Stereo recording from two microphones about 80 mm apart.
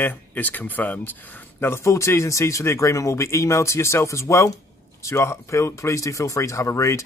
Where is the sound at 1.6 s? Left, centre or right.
Left.